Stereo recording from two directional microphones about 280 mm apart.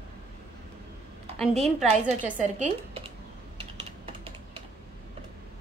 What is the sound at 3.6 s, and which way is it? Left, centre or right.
Typing, centre.